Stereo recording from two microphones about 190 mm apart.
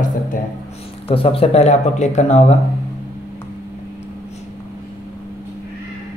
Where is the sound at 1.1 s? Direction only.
30° left (ahead or behind).